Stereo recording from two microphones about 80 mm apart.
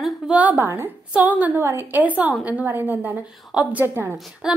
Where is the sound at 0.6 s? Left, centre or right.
Right.